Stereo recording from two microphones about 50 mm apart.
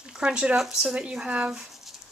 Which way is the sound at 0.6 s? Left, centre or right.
Centre.